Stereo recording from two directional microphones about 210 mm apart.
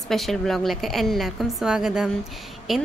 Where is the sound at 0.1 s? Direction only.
Centre (ahead or behind).